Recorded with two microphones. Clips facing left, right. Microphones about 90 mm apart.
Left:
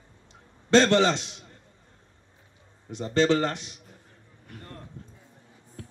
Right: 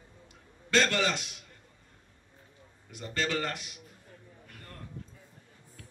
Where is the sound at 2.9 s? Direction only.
30° left (ahead or behind).